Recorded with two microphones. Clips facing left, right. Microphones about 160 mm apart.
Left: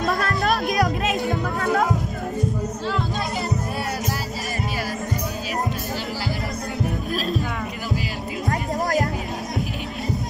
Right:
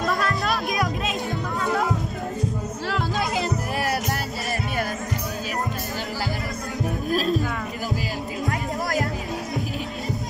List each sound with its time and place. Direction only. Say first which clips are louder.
0.0 s music: left 2 dB; 45° left (ahead or behind)
2.9 s music: right 3 dB; 90° right
8.5 s music: left 4 dB; 40° left (ahead or behind)